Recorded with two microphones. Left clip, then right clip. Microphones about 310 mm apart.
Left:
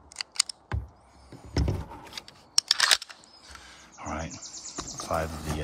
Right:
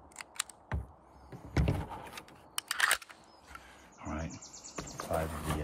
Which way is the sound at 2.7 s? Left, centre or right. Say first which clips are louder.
Left 6 dB; left.